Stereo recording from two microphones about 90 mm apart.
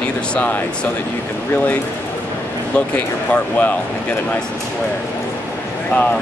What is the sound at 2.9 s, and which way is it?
Speech, 15° left (ahead or behind).